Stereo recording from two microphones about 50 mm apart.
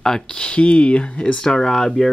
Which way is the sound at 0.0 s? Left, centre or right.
Centre.